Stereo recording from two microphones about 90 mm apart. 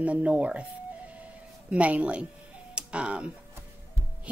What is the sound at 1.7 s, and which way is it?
Speech, 15° right (ahead or behind).